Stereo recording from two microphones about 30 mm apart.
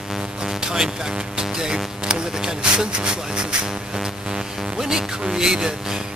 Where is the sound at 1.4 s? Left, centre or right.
Right.